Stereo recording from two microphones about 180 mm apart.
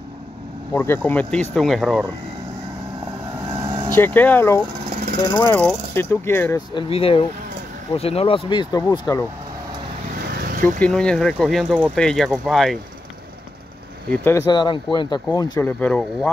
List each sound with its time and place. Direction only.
0.7 s speech: 10° left (ahead or behind)
3.9 s speech: 10° left (ahead or behind)
6.7 s speech: 30° left (ahead or behind)
10.3 s vehicle: 50° right (ahead or behind)
10.8 s speech: 5° left (ahead or behind)
14.0 s speech: 10° left (ahead or behind)
15.6 s speech: 5° left (ahead or behind)